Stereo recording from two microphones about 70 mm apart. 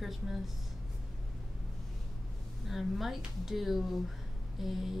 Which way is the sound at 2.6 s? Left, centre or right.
Centre.